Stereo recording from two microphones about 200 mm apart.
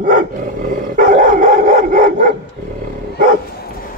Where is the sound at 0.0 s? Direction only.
45° right (ahead or behind).